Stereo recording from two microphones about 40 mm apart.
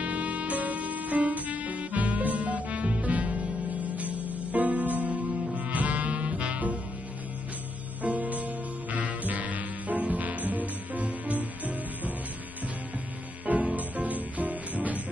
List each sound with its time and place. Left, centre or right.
0.0 s music: right
8.0 s music: right
13.7 s music: right